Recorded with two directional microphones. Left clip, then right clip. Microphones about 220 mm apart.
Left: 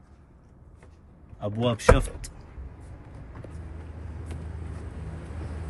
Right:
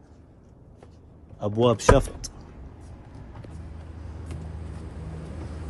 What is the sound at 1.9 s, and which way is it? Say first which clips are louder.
Speech: right 8 dB; 15° right (ahead or behind).